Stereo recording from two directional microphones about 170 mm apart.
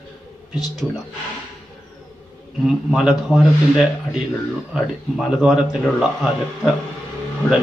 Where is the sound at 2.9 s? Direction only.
Centre (ahead or behind).